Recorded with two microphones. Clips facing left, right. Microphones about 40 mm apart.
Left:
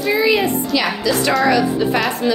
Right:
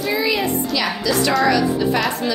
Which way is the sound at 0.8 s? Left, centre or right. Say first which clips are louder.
Left 1 dB; centre.